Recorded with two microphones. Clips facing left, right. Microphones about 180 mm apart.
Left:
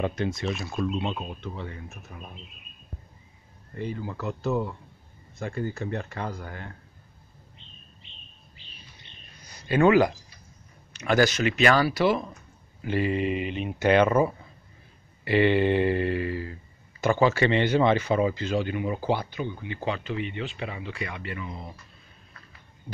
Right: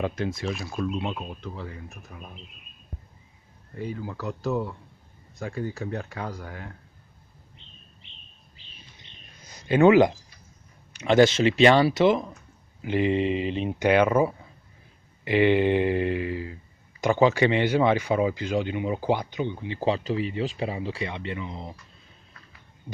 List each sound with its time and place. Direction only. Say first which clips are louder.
0.0 s speech: even; centre (ahead or behind)
3.7 s speech: even; centre (ahead or behind)
9.6 s speech: right 3 dB; 20° right (ahead or behind)
13.7 s a sound: even; 10° right (ahead or behind)
17.0 s speech: right 2 dB; 15° right (ahead or behind)